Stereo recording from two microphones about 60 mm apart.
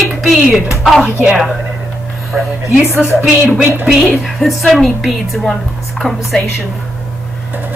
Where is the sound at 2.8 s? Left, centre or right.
Left.